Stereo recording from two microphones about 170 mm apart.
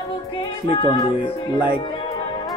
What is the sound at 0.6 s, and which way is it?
Music, 30° left (ahead or behind).